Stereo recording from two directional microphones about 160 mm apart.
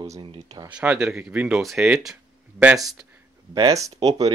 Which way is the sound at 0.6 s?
10° right (ahead or behind).